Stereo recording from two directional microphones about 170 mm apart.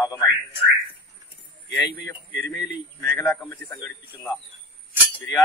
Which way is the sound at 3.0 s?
15° left (ahead or behind).